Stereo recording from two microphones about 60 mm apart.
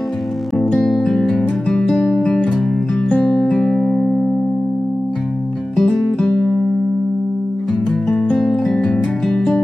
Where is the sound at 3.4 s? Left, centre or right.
Centre.